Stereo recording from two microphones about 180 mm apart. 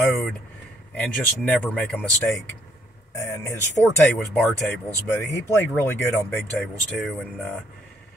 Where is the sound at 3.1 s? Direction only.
15° left (ahead or behind).